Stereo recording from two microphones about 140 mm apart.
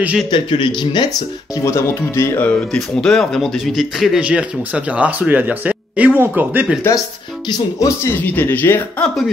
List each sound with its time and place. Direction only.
0.0 s speech: 10° right (ahead or behind)
0.3 s a man's voice: 35° left (ahead or behind)
1.6 s speech: 20° left (ahead or behind)
2.7 s speech: 5° left (ahead or behind); by 6.8 s 10° right (ahead or behind)
7.4 s speech: 20° left (ahead or behind)